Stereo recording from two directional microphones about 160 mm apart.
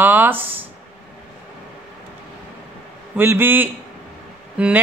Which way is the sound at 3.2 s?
15° right (ahead or behind).